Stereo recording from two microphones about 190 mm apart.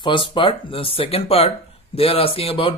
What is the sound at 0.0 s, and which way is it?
Speech, 25° left (ahead or behind).